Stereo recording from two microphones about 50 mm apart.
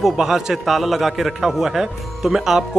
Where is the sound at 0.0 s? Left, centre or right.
Centre.